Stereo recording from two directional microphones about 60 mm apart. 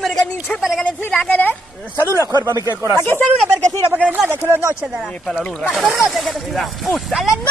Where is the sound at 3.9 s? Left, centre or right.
Right.